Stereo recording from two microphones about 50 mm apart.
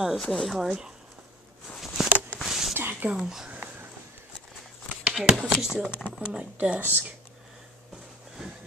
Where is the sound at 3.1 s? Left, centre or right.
Centre.